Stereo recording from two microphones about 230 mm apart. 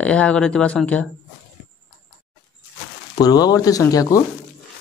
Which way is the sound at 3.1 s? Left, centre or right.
Centre.